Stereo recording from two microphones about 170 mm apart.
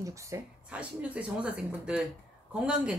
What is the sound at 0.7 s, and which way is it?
Speech, 5° right (ahead or behind).